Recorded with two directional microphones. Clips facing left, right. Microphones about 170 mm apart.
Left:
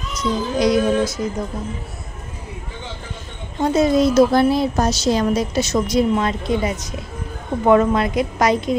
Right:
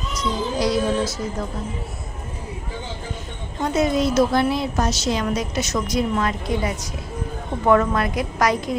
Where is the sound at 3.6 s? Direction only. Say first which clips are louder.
Left 4 dB; 30° left (ahead or behind).